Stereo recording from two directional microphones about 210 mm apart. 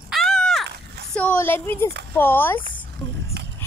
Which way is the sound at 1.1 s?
10° left (ahead or behind).